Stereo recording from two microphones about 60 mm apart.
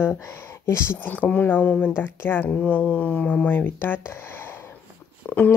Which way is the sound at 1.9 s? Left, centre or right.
Left.